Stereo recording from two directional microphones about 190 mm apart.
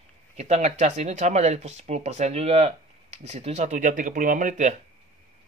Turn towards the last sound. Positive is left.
turn(degrees=-40)  # may be behind; listen again after turning